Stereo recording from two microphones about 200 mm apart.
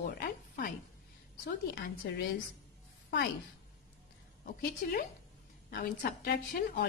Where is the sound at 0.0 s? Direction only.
45° left (ahead or behind).